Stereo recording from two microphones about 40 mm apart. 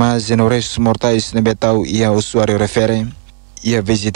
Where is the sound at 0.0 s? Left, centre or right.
Centre.